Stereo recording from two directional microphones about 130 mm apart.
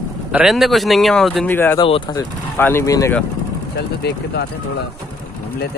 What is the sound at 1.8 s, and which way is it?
Speech, 40° left (ahead or behind).